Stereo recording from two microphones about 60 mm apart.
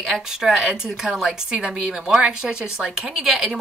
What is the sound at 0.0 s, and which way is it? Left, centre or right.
Speech, centre.